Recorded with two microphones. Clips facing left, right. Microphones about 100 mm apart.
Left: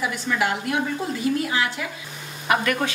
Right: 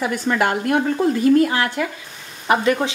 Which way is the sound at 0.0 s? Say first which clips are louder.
Right 5 dB; 50° right (ahead or behind).